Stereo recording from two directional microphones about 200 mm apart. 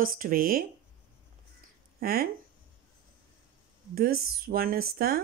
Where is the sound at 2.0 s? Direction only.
50° right (ahead or behind).